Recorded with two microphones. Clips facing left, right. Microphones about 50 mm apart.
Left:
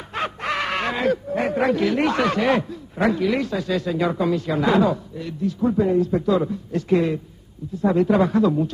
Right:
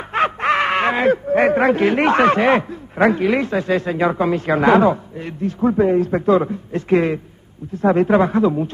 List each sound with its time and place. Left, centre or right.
0.1 s speech: right